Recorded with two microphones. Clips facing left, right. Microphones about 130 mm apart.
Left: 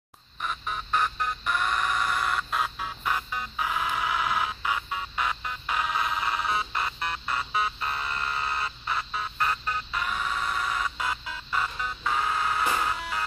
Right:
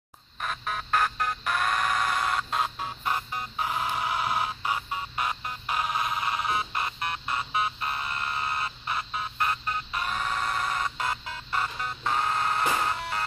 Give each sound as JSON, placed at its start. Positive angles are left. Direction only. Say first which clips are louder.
{"t": 0.4, "sound": "music", "louder": "even", "side_deg": -60}
{"t": 2.6, "sound": "music", "louder": "even", "side_deg": -35}
{"t": 10.0, "sound": "music", "louder": "right 1 dB", "side_deg": -50}